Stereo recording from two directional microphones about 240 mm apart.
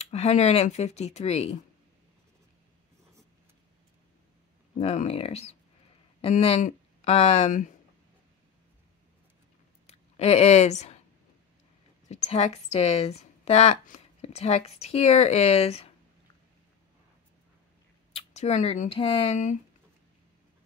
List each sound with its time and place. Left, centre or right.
0.0 s a woman's voice: left
4.7 s a woman's voice: left
9.8 s a woman's voice: left
12.1 s a woman's voice: left
18.1 s speech: left